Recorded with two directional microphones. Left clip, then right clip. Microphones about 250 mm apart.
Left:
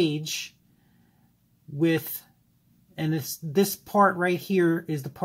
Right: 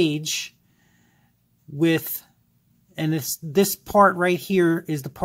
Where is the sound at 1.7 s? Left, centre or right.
Right.